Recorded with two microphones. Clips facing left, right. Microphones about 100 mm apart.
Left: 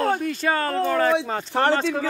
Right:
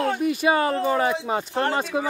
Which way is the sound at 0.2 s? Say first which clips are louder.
Right 3 dB; 15° right (ahead or behind).